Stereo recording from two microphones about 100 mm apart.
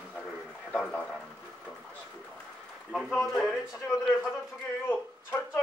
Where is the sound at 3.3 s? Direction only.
Centre (ahead or behind).